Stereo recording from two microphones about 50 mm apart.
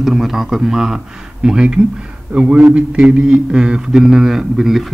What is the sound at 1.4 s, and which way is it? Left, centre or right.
Mantra, centre.